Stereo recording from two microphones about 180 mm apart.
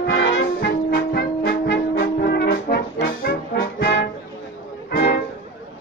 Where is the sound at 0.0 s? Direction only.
80° left.